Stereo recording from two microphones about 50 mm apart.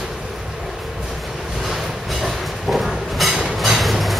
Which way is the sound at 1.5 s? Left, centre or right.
Centre.